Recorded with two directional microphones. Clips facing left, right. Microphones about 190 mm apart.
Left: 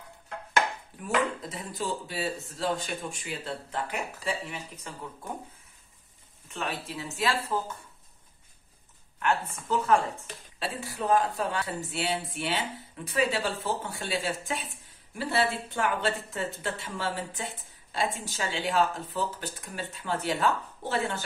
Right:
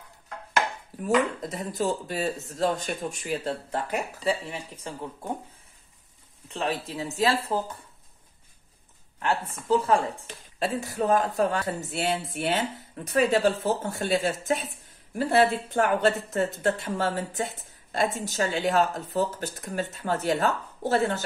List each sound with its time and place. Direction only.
1.0 s speech: 40° right (ahead or behind)
6.5 s speech: 35° right (ahead or behind)
9.2 s speech: 35° right (ahead or behind)
10.6 s speech: 45° right (ahead or behind)